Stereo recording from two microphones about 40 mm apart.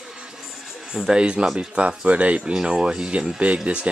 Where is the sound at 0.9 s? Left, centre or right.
Centre.